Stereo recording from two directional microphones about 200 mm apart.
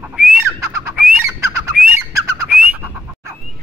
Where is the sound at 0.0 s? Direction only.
10° right (ahead or behind).